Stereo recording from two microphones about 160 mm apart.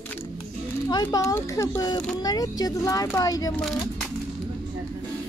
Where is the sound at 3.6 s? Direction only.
Centre (ahead or behind).